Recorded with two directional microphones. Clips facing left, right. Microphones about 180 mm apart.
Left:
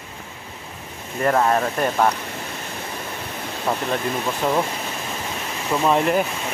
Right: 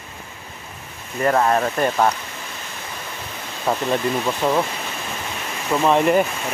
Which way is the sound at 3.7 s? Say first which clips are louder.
Right 3 dB; 5° right (ahead or behind).